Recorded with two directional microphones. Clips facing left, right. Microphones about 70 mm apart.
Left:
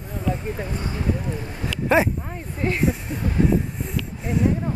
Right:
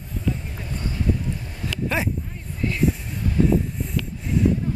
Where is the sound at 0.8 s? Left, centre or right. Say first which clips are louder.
Right 2 dB; left.